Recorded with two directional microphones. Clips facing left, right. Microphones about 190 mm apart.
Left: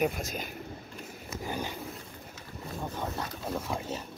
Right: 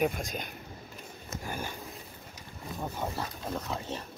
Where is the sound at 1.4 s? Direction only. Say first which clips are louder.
Left 3 dB; 15° left (ahead or behind).